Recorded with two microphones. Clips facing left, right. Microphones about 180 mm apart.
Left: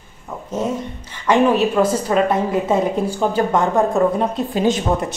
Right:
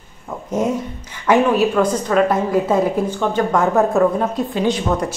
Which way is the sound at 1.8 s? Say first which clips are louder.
Even; 5° left (ahead or behind).